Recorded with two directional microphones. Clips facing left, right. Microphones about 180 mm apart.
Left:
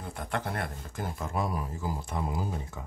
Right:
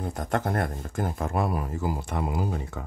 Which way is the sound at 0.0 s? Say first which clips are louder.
Right 6 dB; 45° right (ahead or behind).